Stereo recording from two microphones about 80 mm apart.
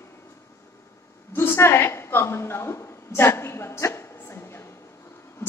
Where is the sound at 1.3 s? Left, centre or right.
Left.